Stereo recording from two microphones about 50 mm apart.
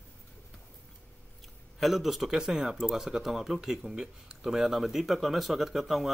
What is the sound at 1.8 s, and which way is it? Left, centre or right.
Speech, centre.